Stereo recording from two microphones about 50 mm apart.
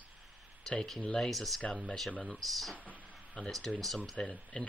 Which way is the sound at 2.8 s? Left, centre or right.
Left.